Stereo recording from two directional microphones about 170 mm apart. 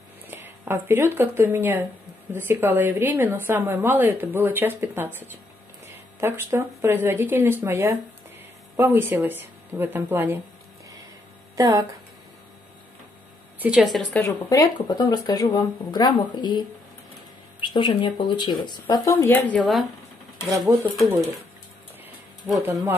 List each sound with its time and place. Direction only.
0.3 s a woman's voice: 15° right (ahead or behind)
11.5 s speech: 20° right (ahead or behind)
13.6 s a woman's voice: 5° right (ahead or behind)
14.2 s speech: 20° left (ahead or behind)
19.1 s speech: 10° left (ahead or behind)
20.5 s a woman's voice: 20° right (ahead or behind)